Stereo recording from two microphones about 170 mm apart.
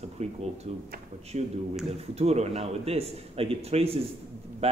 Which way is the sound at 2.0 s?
40° right (ahead or behind).